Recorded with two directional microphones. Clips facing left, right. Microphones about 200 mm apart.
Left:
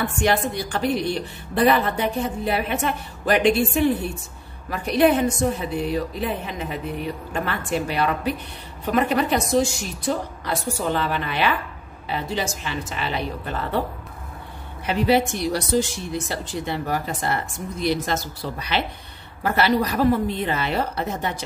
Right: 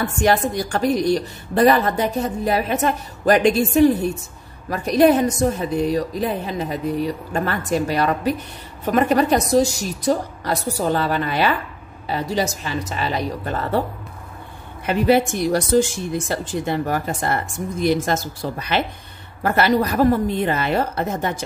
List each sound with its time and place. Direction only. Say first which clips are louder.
0.0 s a woman's voice: right 3 dB; 40° right (ahead or behind)
14.9 s speech: right 3 dB; 50° right (ahead or behind)